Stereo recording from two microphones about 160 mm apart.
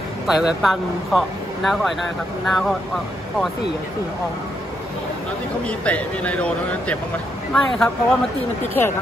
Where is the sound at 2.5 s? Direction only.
Centre (ahead or behind).